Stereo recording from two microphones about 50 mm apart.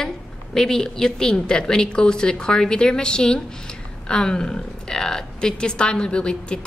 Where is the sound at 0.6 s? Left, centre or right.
Centre.